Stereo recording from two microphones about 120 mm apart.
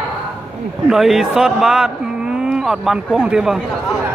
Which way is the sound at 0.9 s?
5° right (ahead or behind).